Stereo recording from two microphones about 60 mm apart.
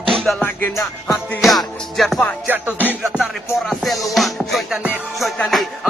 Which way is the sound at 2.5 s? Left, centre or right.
Right.